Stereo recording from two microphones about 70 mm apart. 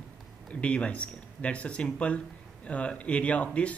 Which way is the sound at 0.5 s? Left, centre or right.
Centre.